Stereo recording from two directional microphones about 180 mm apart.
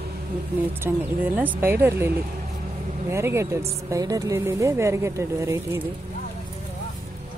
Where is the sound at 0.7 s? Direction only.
10° right (ahead or behind).